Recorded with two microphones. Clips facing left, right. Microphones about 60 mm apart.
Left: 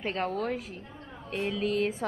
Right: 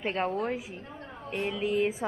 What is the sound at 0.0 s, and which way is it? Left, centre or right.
A woman's voice, right.